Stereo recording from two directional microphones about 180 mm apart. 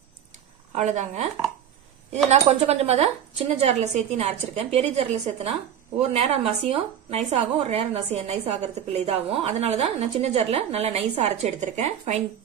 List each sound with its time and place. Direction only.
0.7 s speech: 40° right (ahead or behind)
2.3 s speech: 35° right (ahead or behind)